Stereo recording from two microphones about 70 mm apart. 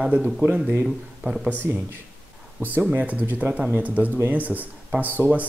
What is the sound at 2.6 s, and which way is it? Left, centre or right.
Speech, right.